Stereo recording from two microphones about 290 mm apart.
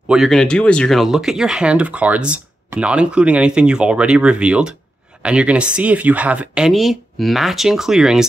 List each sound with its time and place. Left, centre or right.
0.1 s speech: centre